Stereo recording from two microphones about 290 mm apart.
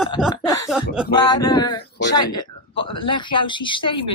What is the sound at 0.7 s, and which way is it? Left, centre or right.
Speech, centre.